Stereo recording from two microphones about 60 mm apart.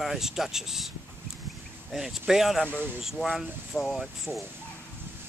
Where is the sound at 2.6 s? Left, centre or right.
Right.